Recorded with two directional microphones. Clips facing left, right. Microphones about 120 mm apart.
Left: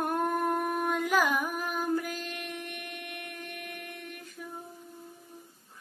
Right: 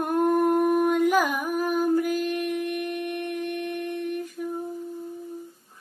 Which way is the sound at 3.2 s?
20° right (ahead or behind).